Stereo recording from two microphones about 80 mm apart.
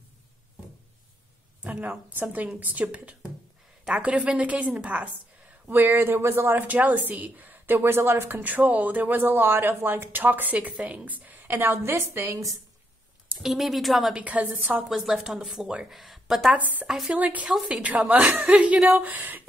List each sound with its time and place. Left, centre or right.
1.6 s a woman's voice: centre
5.7 s speech: right
13.4 s speech: centre
14.1 s speech: centre
14.9 s speech: centre
16.5 s speech: centre